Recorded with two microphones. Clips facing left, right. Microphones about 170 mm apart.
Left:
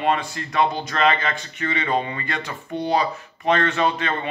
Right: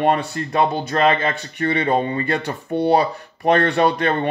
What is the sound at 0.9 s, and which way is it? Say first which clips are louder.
Speech: right 3 dB; 35° right (ahead or behind).